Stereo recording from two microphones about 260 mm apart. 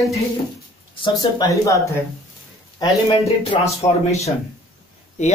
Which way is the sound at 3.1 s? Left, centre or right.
Left.